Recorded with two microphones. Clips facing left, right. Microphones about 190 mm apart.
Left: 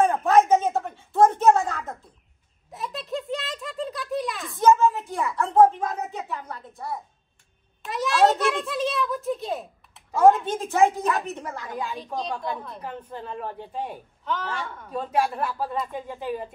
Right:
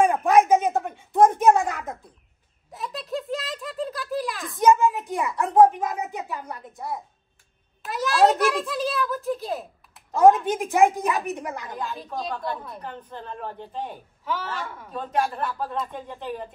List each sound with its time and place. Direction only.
0.0 s a sound: 15° right (ahead or behind)
2.7 s a sound: centre (ahead or behind)
4.6 s a child's voice: 15° right (ahead or behind); by 10.2 s centre (ahead or behind)
10.4 s speech: 15° right (ahead or behind)
11.9 s a child's voice: centre (ahead or behind)
14.2 s speech: 5° right (ahead or behind)
14.9 s a child's voice: 5° left (ahead or behind)